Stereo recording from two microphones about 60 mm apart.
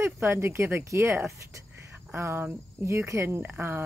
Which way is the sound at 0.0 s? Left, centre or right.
Right.